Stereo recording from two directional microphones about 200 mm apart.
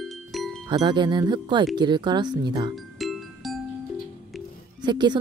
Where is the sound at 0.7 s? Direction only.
20° right (ahead or behind).